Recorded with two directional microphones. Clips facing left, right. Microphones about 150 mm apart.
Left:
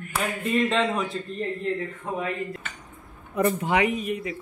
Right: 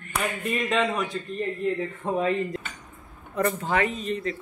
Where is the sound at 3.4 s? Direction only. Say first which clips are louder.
Left 2 dB; 15° left (ahead or behind).